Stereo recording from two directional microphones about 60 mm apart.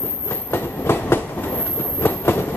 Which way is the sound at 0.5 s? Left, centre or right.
Left.